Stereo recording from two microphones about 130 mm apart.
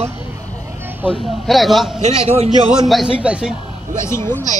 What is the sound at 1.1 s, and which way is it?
Speech, centre (ahead or behind).